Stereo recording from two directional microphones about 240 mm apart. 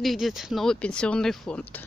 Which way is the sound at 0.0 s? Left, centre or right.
Centre.